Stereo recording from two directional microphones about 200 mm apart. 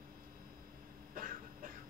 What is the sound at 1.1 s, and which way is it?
Cough, 45° right (ahead or behind).